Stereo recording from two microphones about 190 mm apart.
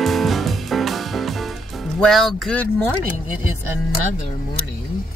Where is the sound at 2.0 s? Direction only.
Centre (ahead or behind).